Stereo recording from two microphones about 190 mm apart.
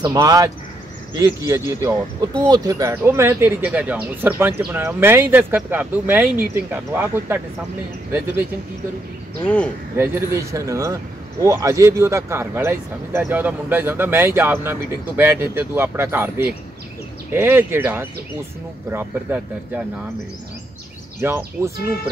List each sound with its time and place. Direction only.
0.0 s speech: 20° right (ahead or behind)
9.4 s speech: 5° left (ahead or behind)
9.9 s speech: 10° right (ahead or behind)
21.2 s speech: 15° right (ahead or behind)